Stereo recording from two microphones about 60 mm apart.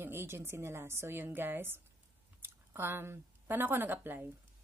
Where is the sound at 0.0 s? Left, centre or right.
Right.